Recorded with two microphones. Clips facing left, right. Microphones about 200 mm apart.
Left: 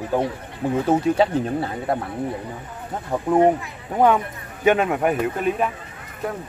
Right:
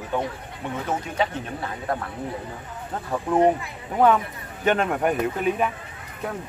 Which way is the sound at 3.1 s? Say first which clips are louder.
Left 3 dB; 15° left (ahead or behind).